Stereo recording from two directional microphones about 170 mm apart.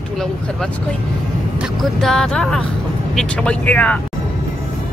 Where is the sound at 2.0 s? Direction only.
Centre (ahead or behind).